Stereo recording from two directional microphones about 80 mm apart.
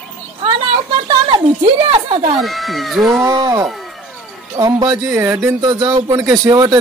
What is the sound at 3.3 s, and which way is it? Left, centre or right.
A man's voice, right.